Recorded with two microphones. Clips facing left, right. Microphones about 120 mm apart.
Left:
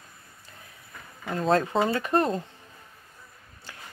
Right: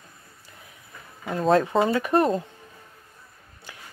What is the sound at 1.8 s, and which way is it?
Speech, 20° right (ahead or behind).